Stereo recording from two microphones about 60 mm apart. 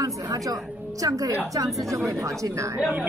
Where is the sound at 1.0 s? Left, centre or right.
Right.